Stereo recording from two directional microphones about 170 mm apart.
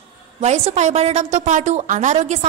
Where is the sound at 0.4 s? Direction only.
40° right (ahead or behind).